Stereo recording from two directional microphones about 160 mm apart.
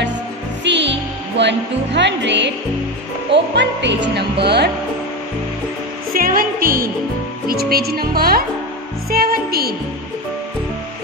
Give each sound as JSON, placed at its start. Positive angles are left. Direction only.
{"t": 0.7, "sound": "music", "side_deg": -90}
{"t": 1.4, "sound": "speech", "side_deg": -90}
{"t": 6.1, "sound": "music", "side_deg": -65}
{"t": 7.4, "sound": "speech", "side_deg": -75}